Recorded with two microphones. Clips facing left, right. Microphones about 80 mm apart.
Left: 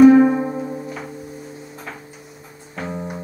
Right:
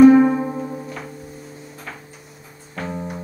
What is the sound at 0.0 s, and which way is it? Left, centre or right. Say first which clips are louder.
Music: even; centre.